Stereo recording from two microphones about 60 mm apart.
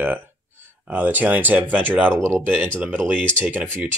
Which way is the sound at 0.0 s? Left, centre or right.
Right.